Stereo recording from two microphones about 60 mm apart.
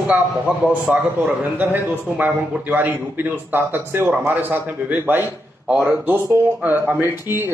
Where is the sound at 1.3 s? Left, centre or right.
Right.